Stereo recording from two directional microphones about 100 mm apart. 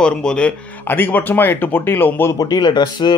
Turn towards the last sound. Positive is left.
turn(degrees=50)  # may be behind; listen again after turning